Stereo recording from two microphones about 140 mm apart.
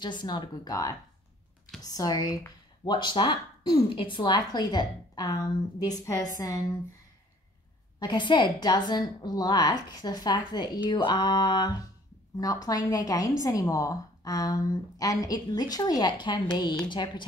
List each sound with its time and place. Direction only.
0.0 s a woman's voice: 35° left (ahead or behind)
8.0 s a woman's voice: 35° left (ahead or behind)